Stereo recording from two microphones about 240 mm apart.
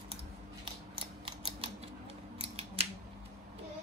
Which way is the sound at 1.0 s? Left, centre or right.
Right.